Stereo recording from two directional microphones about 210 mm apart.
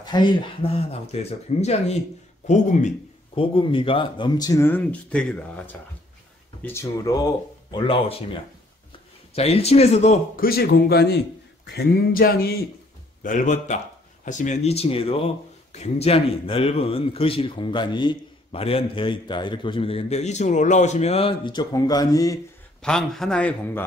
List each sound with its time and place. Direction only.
0.0 s a man's voice: 20° left (ahead or behind)
7.7 s speech: 25° left (ahead or behind)
10.4 s a man's voice: 45° left (ahead or behind); by 22.4 s 15° left (ahead or behind)
22.8 s speech: 5° left (ahead or behind)